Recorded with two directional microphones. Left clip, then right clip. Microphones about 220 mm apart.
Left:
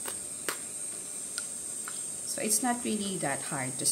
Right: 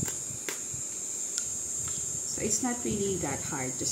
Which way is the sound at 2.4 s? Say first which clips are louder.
Left 2 dB; 50° left (ahead or behind).